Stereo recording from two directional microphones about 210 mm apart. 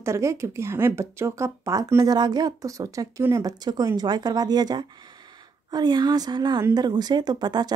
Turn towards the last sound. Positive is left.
turn(degrees=-20)  # may be behind; listen again after turning